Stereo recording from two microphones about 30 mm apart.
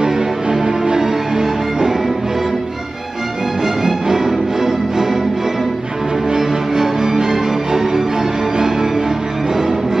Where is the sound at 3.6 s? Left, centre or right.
Centre.